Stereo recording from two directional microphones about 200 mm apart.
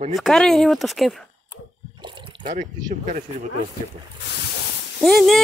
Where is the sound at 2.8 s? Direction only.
40° right (ahead or behind).